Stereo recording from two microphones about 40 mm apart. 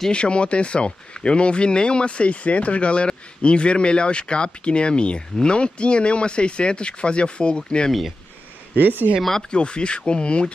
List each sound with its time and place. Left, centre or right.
0.1 s speech: left
8.7 s speech: right
9.5 s speech: left